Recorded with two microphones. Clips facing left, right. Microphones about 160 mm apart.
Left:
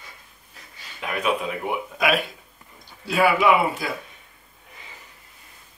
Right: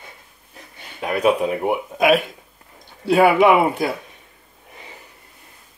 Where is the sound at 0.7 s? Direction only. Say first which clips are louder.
Right 3 dB; 55° right (ahead or behind).